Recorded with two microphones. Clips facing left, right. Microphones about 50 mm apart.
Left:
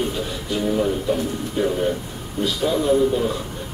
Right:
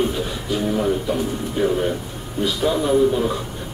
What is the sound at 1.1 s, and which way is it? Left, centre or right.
A man's voice, centre.